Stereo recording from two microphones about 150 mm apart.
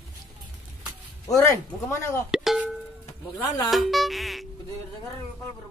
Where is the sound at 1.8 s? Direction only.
20° left (ahead or behind).